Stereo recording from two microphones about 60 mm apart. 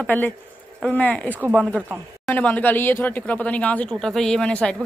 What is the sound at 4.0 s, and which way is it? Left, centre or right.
Speech, centre.